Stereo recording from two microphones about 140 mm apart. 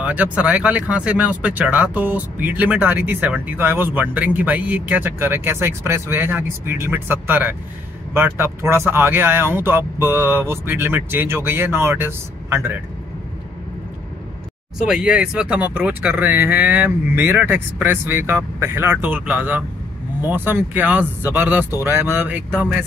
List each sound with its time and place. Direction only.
0.0 s speech: 10° right (ahead or behind)
14.8 s speech: 5° right (ahead or behind)